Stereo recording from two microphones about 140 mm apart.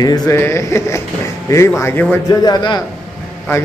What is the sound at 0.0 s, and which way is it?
Speech, 25° left (ahead or behind).